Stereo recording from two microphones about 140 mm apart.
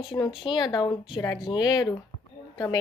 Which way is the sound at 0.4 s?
30° left (ahead or behind).